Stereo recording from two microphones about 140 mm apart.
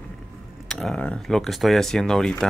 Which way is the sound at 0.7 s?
5° left (ahead or behind).